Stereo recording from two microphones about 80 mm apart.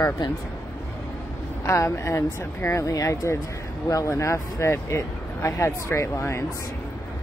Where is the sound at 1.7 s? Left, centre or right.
Left.